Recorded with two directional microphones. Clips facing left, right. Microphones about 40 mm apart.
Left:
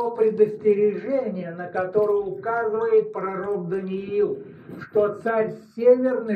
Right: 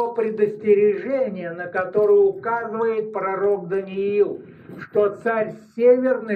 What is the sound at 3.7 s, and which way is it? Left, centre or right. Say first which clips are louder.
Speech: right 4 dB; right.